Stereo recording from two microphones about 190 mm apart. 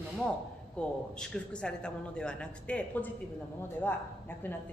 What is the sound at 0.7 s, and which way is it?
Speech, 5° left (ahead or behind).